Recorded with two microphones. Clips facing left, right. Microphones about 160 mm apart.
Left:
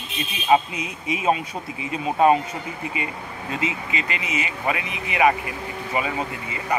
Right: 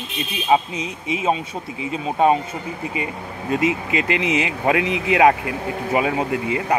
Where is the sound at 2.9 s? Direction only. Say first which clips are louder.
Right 3 dB; 40° right (ahead or behind).